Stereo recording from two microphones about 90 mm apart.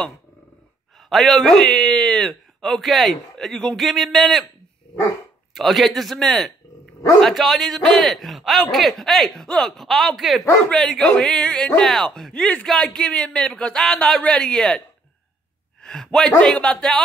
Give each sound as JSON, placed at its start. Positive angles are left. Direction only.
{"t": 1.0, "sound": "a man's voice", "side_deg": 0}
{"t": 5.5, "sound": "a man's voice", "side_deg": 0}
{"t": 15.8, "sound": "speech", "side_deg": 5}